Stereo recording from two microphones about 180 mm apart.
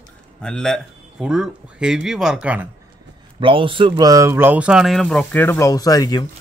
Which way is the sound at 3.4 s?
30° right (ahead or behind).